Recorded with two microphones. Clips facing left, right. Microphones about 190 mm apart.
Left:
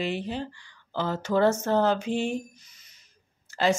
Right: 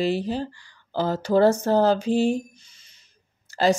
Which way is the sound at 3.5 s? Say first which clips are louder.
Right 4 dB; 35° right (ahead or behind).